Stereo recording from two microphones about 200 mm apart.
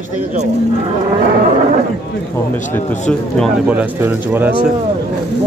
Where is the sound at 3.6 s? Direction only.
10° right (ahead or behind).